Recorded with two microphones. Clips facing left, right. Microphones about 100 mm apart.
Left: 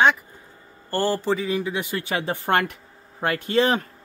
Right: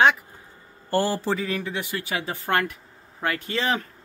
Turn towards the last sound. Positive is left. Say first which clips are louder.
# left 5 dB
turn(degrees=30)  # may be behind; listen again after turning